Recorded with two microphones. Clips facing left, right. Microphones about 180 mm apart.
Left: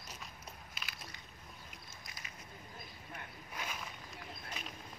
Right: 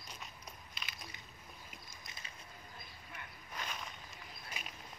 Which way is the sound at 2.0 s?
25° right (ahead or behind).